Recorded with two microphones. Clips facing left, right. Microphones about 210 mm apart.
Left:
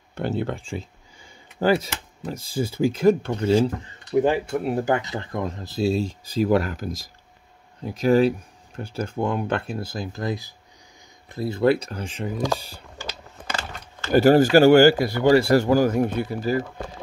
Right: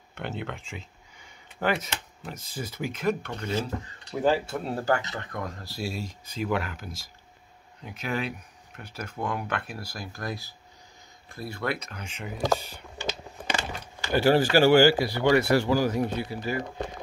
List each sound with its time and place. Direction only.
0.1 s speech: 35° left (ahead or behind)
3.8 s speech: 20° left (ahead or behind)
13.5 s a sound: 15° right (ahead or behind)
14.1 s speech: 45° left (ahead or behind)
15.3 s speech: 35° left (ahead or behind)